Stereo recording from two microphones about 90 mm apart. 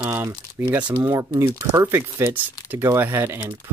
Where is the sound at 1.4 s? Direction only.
30° right (ahead or behind).